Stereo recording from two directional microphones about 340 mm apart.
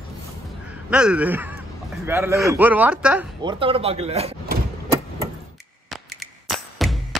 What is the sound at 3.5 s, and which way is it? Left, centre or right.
Speech, centre.